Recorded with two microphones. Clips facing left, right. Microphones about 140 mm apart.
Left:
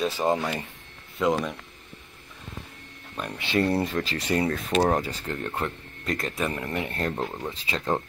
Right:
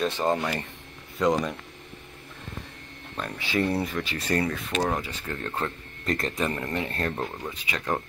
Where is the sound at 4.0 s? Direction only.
40° left (ahead or behind).